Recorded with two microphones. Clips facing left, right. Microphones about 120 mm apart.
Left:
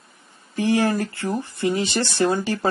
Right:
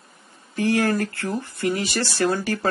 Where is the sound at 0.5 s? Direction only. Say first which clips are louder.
Left 1 dB; 15° left (ahead or behind).